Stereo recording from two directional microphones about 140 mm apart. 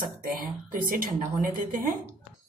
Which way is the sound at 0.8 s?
85° right.